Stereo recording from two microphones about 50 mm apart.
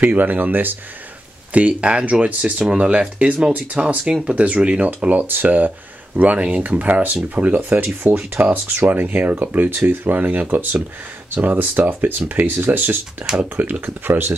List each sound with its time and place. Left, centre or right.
0.0 s speech: right
1.5 s speech: right
6.1 s speech: right